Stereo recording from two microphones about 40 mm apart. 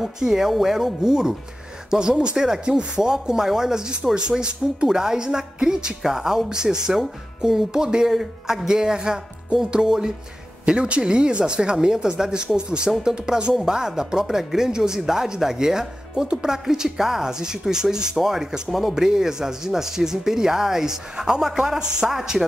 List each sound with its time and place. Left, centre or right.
0.0 s speech: centre
10.6 s speech: right; by 22.4 s centre